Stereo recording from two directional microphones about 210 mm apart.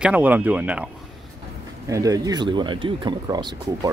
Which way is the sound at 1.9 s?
15° right (ahead or behind).